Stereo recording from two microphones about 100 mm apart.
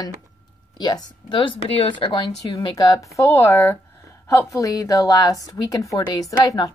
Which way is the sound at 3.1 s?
25° left (ahead or behind).